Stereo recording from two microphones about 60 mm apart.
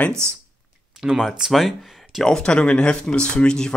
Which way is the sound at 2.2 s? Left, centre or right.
Centre.